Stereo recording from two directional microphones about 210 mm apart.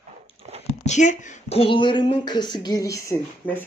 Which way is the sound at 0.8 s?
35° left (ahead or behind).